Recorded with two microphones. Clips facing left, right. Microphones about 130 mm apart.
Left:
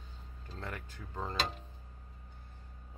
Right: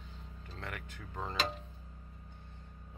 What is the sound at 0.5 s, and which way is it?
Speech, 5° left (ahead or behind).